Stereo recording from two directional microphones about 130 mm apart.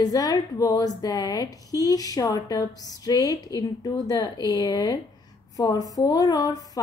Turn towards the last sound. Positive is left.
turn(degrees=30)  # may be behind; listen again after turning